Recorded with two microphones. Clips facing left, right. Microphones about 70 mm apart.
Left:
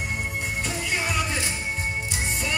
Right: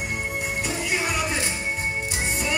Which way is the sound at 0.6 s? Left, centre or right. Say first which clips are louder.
Right 2 dB; centre.